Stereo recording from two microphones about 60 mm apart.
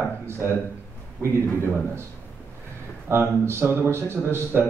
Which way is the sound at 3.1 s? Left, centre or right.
Right.